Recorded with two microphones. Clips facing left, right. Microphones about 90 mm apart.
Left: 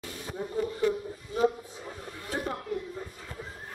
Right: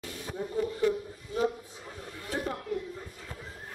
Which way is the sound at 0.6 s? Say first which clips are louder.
Even; 20° left (ahead or behind).